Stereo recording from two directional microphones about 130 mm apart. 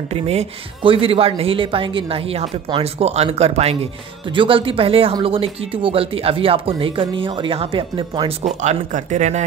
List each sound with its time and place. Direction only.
0.1 s speech: 55° right (ahead or behind)
8.5 s speech: 70° right (ahead or behind)